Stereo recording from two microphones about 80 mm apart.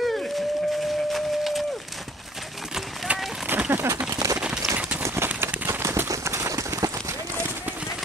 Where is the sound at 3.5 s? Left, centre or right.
Right.